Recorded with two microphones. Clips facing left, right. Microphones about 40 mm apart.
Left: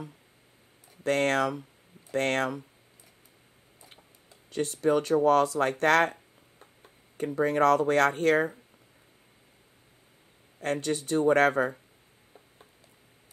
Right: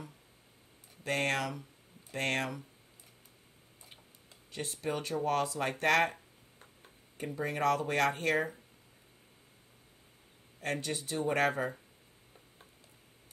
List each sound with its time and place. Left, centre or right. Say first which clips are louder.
1.0 s speech: left 7 dB; left
4.5 s speech: left 11 dB; left
7.2 s speech: left 8 dB; left
10.6 s speech: left 6 dB; left